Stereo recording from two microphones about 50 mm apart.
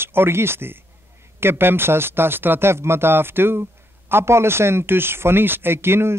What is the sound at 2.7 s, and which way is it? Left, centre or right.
Speech, right.